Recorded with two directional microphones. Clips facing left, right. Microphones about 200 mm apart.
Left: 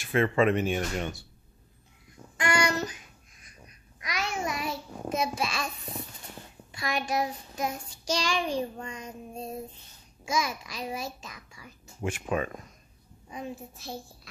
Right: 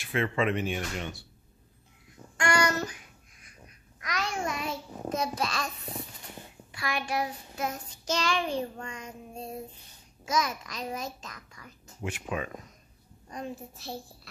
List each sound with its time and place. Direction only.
0.0 s speech: 45° left (ahead or behind)
2.1 s child singing: 5° left (ahead or behind)
3.6 s a child's voice: 10° left (ahead or behind)
6.7 s child singing: 20° left (ahead or behind)
10.2 s child singing: 10° left (ahead or behind)
12.0 s speech: 45° left (ahead or behind)
13.3 s a child's voice: 5° left (ahead or behind)